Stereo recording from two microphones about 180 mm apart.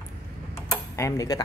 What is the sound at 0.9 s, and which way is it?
Speech, 20° left (ahead or behind).